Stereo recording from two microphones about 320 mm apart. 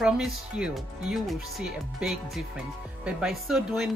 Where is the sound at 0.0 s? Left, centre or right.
Centre.